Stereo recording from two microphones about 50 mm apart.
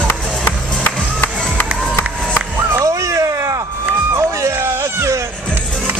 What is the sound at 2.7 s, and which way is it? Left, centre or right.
Vehicle, right.